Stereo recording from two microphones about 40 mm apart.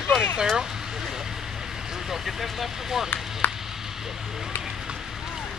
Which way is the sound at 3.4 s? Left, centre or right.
Left.